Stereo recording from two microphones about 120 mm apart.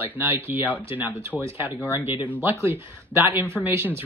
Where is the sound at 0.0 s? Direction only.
20° right (ahead or behind).